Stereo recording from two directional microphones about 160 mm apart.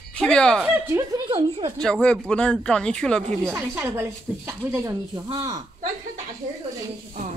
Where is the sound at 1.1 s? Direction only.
35° right (ahead or behind).